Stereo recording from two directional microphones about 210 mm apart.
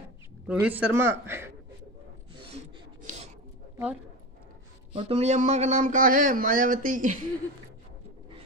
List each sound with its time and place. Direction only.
0.5 s a man's voice: 5° right (ahead or behind)
3.7 s speech: 5° right (ahead or behind)
4.9 s speech: 30° right (ahead or behind)